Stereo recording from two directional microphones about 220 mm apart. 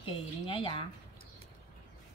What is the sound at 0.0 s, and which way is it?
Speech, 25° left (ahead or behind).